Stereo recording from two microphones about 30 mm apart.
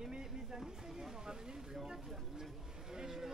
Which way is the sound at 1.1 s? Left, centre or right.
Right.